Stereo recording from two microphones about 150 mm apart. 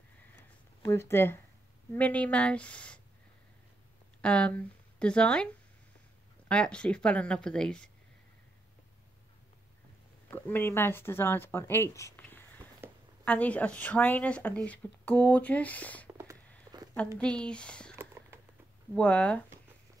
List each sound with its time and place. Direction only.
0.8 s speech: 15° left (ahead or behind)
4.2 s speech: 10° left (ahead or behind)
6.5 s speech: 5° left (ahead or behind)
10.2 s speech: 10° left (ahead or behind)
12.2 s a sound: 15° left (ahead or behind)
12.8 s a sound: 15° right (ahead or behind)
13.2 s speech: 10° left (ahead or behind)
17.2 s speech: 5° left (ahead or behind)
17.9 s a sound: 20° right (ahead or behind)
18.9 s speech: 5° left (ahead or behind)